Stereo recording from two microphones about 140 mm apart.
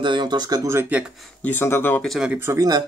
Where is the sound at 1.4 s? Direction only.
15° left (ahead or behind).